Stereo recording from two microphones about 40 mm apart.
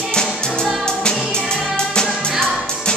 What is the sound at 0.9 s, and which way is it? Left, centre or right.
Music, centre.